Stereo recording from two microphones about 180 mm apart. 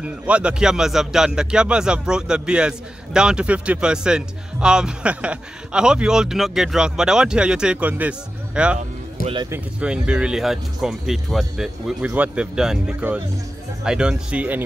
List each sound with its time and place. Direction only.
0.0 s speech: 5° right (ahead or behind)
8.7 s speech: 30° right (ahead or behind)
9.5 s speech: 5° right (ahead or behind)